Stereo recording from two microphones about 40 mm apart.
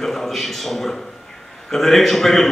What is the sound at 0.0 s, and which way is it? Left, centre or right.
A man's voice, centre.